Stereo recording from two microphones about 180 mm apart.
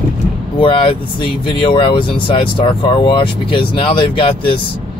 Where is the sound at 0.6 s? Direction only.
30° left (ahead or behind).